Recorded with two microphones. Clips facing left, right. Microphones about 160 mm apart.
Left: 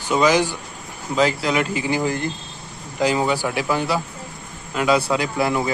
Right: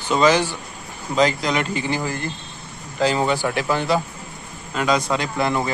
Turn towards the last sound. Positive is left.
turn(degrees=5)  # may be behind; listen again after turning